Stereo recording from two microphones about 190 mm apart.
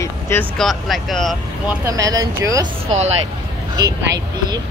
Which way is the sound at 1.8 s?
20° right (ahead or behind).